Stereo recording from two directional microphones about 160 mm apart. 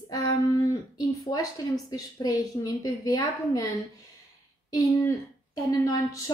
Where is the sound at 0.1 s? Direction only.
25° left (ahead or behind).